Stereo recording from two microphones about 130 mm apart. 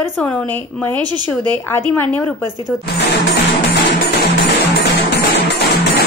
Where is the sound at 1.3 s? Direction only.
10° left (ahead or behind).